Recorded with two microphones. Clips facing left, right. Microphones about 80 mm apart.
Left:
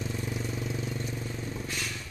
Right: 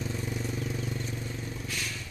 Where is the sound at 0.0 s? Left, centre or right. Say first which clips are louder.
Even; centre.